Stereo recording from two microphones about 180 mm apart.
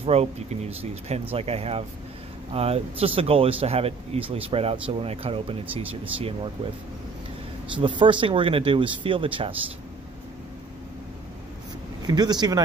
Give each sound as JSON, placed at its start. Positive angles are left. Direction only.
{"t": 0.0, "sound": "speech", "side_deg": -35}
{"t": 7.7, "sound": "speech", "side_deg": -25}
{"t": 12.0, "sound": "speech", "side_deg": -20}